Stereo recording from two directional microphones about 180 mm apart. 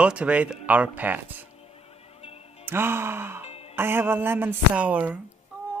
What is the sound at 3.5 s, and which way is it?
Music, 35° left (ahead or behind).